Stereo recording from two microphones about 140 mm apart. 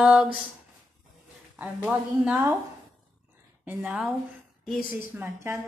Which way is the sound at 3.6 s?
10° right (ahead or behind).